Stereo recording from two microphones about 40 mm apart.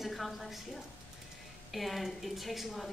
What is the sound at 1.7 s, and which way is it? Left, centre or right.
Speech, centre.